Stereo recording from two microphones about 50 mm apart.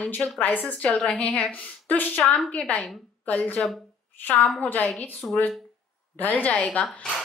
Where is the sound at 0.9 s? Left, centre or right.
Left.